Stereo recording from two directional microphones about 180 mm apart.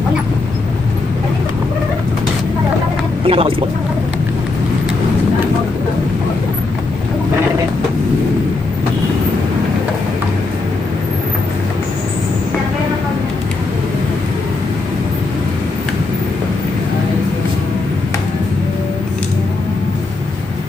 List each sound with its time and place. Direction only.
3.3 s speech: 30° right (ahead or behind)